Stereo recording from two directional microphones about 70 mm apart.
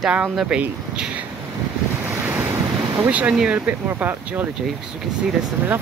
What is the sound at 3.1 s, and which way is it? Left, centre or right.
Speech, right.